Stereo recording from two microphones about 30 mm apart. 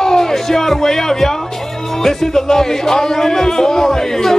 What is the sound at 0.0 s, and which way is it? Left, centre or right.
Speech, centre.